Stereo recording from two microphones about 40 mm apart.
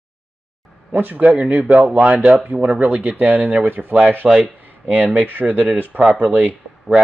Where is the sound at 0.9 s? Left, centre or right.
Right.